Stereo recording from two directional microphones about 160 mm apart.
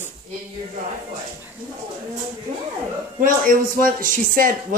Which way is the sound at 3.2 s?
60° right (ahead or behind).